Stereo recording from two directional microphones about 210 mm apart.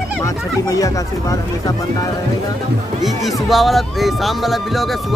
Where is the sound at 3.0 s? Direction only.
Centre (ahead or behind).